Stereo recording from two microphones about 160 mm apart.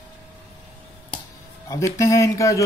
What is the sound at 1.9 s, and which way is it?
Speech, 20° left (ahead or behind).